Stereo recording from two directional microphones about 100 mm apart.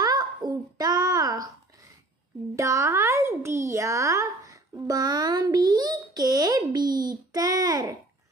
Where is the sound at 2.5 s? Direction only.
30° right (ahead or behind).